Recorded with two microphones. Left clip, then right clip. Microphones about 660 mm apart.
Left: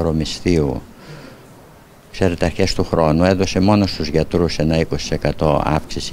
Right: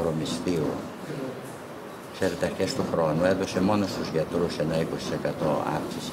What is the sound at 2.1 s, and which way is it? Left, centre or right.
Speech, left.